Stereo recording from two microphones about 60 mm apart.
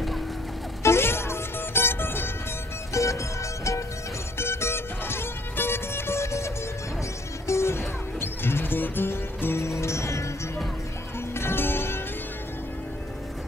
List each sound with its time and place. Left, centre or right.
0.8 s music: left
2.9 s music: left
4.4 s music: left
11.1 s music: left